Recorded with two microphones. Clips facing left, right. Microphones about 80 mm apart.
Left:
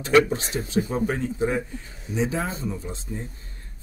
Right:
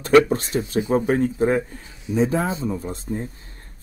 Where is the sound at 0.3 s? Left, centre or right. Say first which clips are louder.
Right 4 dB; right.